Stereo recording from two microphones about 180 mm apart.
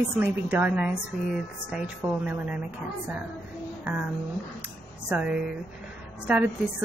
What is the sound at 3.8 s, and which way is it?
Speech, 10° right (ahead or behind).